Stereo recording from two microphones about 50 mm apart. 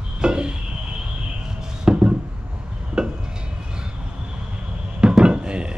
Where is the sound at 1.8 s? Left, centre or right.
Centre.